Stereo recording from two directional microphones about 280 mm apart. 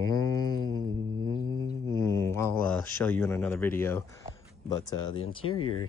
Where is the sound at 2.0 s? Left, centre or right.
Centre.